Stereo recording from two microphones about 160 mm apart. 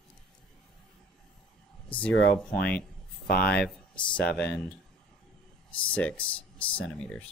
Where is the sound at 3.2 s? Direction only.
70° left (ahead or behind).